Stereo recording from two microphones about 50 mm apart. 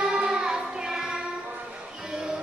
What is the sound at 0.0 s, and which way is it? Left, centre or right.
Child singing, centre.